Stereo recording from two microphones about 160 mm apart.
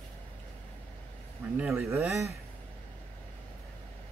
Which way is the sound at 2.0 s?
Centre (ahead or behind).